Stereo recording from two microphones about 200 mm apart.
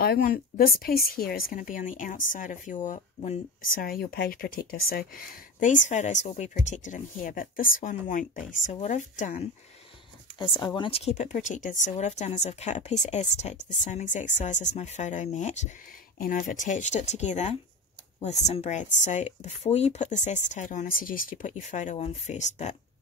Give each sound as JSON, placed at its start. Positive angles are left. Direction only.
{"t": 0.0, "sound": "a woman's voice", "side_deg": 50}
{"t": 10.5, "sound": "a woman's voice", "side_deg": 25}